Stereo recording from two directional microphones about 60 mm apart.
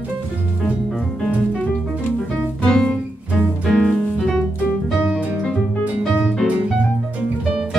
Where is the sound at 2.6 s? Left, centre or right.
Centre.